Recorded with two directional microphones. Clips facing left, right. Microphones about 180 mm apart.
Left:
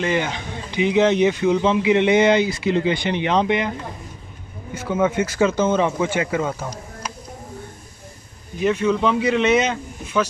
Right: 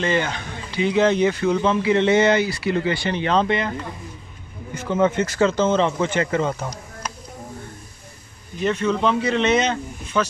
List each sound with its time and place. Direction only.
0.0 s speech: 15° left (ahead or behind)
4.7 s speech: 5° left (ahead or behind)
8.5 s speech: 10° left (ahead or behind)